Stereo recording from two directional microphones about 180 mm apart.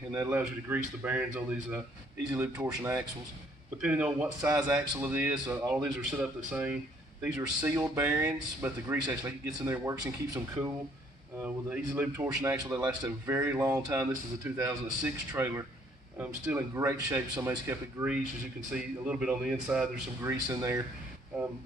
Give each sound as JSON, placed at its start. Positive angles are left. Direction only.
{"t": 0.1, "sound": "a man's voice", "side_deg": -20}
{"t": 0.4, "sound": "a man's voice", "side_deg": -10}
{"t": 20.2, "sound": "a man's voice", "side_deg": -20}